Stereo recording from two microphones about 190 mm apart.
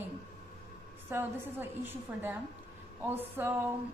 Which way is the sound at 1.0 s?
10° right (ahead or behind).